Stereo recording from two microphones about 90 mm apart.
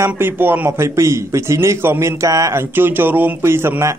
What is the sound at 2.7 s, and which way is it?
A man's voice, 25° right (ahead or behind).